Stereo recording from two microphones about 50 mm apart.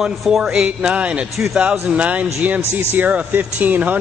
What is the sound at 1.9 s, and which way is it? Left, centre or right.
A man's voice, right.